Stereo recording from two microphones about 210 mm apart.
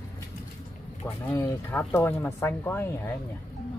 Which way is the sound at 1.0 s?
10° left (ahead or behind).